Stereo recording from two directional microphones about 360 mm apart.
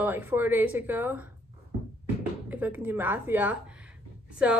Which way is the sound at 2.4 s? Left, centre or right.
Centre.